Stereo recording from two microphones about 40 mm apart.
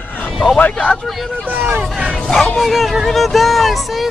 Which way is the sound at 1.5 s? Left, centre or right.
Right.